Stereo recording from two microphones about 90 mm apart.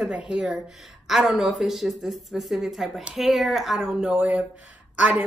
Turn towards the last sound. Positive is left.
turn(degrees=-15)  # may be behind; listen again after turning